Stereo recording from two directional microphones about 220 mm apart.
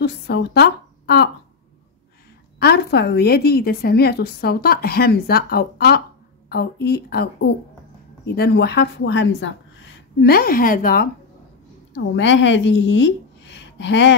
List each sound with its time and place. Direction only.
0.0 s a woman's voice: 50° left (ahead or behind)
2.6 s a woman's voice: 50° left (ahead or behind)
10.2 s a woman's voice: 40° left (ahead or behind)
11.9 s a woman's voice: 55° left (ahead or behind)